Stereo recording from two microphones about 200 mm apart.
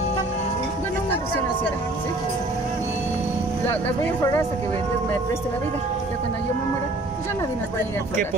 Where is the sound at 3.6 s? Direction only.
10° left (ahead or behind).